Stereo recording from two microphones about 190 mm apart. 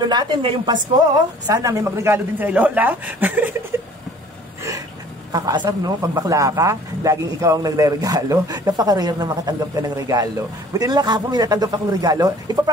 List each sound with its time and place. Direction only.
0.0 s a man's voice: 20° right (ahead or behind)
5.3 s speech: 20° right (ahead or behind)